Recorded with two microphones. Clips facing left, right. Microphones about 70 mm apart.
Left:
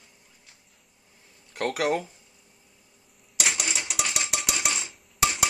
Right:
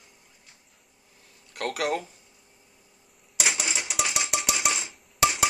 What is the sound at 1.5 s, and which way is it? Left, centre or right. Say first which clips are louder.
Speech: left 2 dB; left.